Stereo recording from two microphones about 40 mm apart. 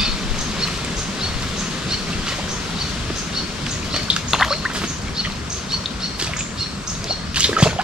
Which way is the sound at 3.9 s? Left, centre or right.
Centre.